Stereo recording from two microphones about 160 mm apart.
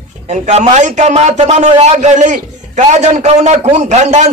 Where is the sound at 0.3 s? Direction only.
45° right (ahead or behind).